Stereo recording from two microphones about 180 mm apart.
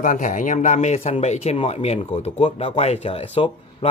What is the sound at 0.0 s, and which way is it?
Speech, 45° left (ahead or behind).